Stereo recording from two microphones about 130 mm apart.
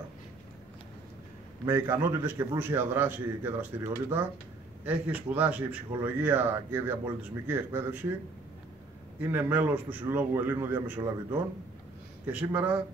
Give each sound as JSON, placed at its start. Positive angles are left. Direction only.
{"t": 1.7, "sound": "a man's voice", "side_deg": -20}
{"t": 9.2, "sound": "a man's voice", "side_deg": -15}
{"t": 11.0, "sound": "a man's voice", "side_deg": -30}
{"t": 12.3, "sound": "a man's voice", "side_deg": -10}